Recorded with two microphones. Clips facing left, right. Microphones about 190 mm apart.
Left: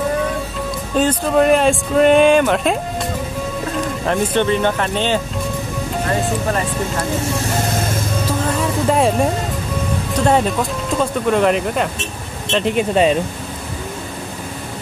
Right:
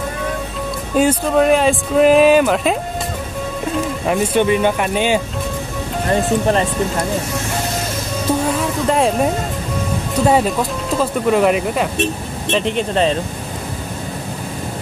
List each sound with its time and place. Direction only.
0.9 s speech: 5° right (ahead or behind)
4.0 s speech: 10° right (ahead or behind)
6.4 s speech: 25° right (ahead or behind)
8.5 s vehicle: centre (ahead or behind)
10.1 s speech: 5° right (ahead or behind)